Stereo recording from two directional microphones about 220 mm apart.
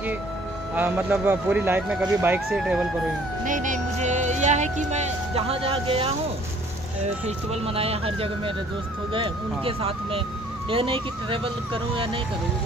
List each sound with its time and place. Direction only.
0.7 s speech: 5° right (ahead or behind)
3.4 s speech: 35° right (ahead or behind)
7.2 s speech: 25° right (ahead or behind)